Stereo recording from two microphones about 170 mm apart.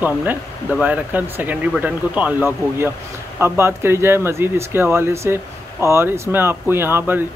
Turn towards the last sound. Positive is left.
turn(degrees=-15)  # may be behind; listen again after turning